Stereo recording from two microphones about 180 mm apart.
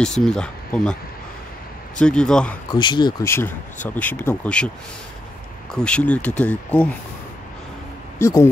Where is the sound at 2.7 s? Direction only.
25° left (ahead or behind); by 4.7 s 5° left (ahead or behind).